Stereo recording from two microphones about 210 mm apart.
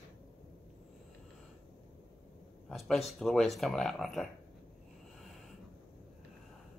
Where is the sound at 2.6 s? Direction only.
Centre (ahead or behind).